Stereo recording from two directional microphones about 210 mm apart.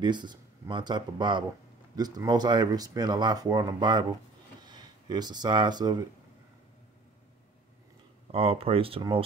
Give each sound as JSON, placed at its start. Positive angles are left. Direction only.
{"t": 0.0, "sound": "speech", "side_deg": -20}
{"t": 8.3, "sound": "speech", "side_deg": -25}